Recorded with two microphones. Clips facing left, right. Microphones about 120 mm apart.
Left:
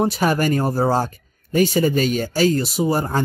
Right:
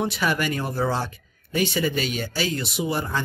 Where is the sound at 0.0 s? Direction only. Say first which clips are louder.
Left 6 dB; 40° left (ahead or behind).